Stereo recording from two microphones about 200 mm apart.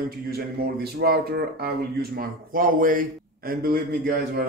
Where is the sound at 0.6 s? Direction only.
50° right (ahead or behind).